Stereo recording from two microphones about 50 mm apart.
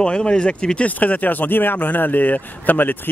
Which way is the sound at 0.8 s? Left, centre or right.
Left.